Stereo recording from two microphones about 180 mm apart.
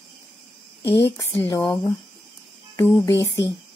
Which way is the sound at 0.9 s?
15° left (ahead or behind).